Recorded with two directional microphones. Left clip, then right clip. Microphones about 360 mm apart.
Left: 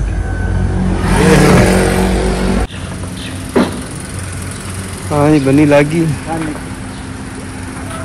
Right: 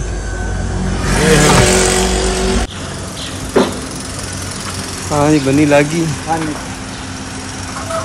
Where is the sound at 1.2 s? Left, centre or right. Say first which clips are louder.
Left 1 dB; centre.